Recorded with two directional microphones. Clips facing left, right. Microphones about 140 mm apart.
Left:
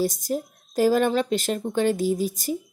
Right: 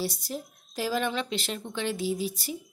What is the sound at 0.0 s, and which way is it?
A woman's voice, 45° left (ahead or behind).